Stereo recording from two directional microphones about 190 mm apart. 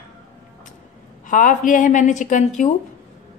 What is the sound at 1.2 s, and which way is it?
A woman's voice, 45° left (ahead or behind).